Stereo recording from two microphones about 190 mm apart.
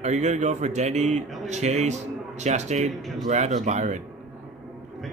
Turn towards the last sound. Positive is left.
turn(degrees=-40)  # may be behind; listen again after turning